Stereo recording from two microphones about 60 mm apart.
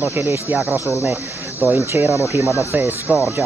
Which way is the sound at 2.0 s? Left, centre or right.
Right.